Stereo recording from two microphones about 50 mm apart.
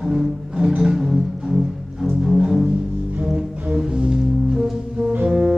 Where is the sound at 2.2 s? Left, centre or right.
Centre.